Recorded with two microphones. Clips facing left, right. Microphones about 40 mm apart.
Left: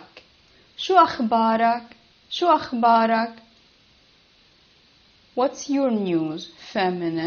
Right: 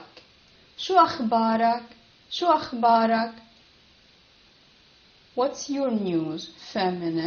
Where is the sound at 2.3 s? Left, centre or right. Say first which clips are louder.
Left 3 dB; left.